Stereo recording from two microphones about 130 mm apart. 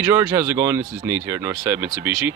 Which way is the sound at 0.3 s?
20° right (ahead or behind).